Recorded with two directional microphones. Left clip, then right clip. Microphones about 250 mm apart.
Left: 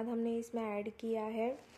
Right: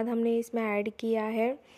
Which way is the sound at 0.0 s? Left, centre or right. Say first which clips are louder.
Right 9 dB; right.